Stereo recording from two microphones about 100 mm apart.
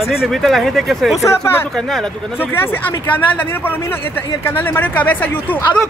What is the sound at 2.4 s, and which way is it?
Speech, 20° left (ahead or behind).